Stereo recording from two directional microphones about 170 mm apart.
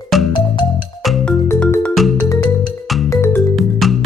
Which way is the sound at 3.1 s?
15° left (ahead or behind).